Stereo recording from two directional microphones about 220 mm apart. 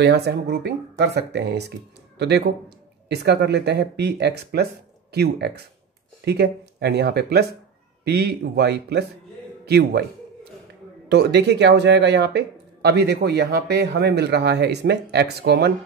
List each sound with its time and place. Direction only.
0.0 s speech: 50° right (ahead or behind)
11.1 s speech: 50° right (ahead or behind)